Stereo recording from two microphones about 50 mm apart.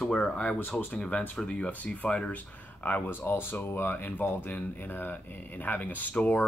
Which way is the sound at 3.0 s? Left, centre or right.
Left.